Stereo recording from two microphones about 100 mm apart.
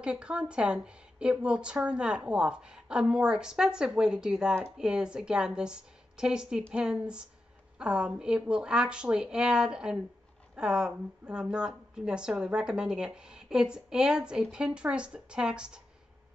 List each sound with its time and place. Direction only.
0.0 s a woman's voice: 10° right (ahead or behind)